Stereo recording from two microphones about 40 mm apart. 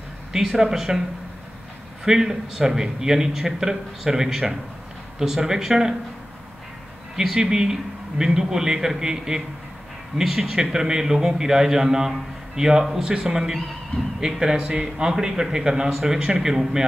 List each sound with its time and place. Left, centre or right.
0.3 s a man's voice: centre
2.0 s a man's voice: centre
7.2 s a man's voice: centre